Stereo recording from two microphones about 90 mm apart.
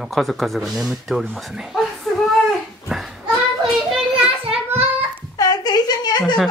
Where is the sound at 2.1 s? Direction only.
5° left (ahead or behind).